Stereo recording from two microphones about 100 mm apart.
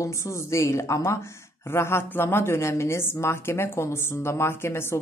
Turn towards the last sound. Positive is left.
turn(degrees=25)  # may be behind; listen again after turning